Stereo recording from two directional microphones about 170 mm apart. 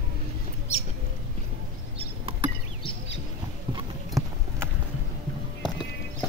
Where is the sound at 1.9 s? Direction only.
35° right (ahead or behind).